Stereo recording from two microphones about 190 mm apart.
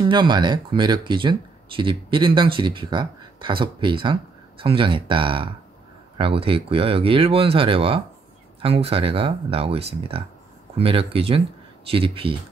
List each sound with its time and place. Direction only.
0.0 s speech: 25° right (ahead or behind)